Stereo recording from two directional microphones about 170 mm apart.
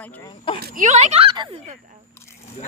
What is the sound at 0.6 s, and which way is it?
Speech, 45° right (ahead or behind).